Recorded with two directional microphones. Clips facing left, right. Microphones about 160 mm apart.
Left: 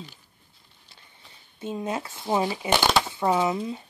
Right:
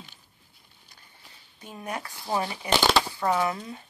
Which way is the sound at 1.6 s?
25° left (ahead or behind).